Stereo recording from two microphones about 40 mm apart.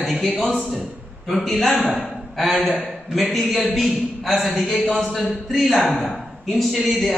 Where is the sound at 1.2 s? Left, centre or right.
Centre.